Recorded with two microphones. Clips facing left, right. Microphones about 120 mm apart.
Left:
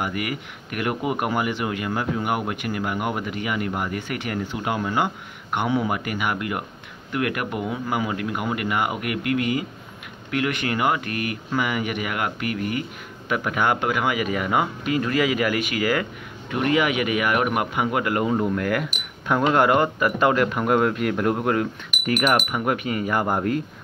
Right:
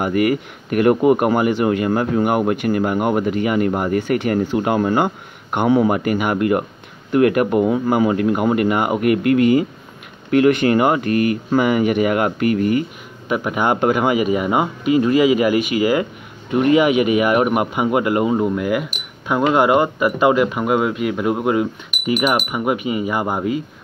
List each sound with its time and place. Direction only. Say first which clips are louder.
0.0 s speech: right 10 dB; 40° right (ahead or behind)
13.3 s speech: right 4 dB; 20° right (ahead or behind)
13.7 s speech: right 7 dB; 30° right (ahead or behind); by 23.6 s 5° right (ahead or behind)